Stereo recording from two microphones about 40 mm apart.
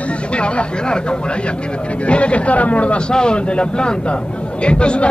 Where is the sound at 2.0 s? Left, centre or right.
Left.